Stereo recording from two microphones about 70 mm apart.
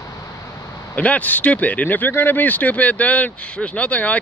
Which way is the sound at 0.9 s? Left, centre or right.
Left.